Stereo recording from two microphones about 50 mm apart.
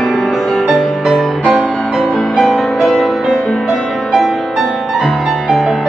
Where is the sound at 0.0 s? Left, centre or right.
Centre.